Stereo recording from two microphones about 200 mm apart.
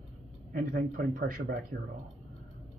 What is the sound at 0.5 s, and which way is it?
Speech, 45° right (ahead or behind).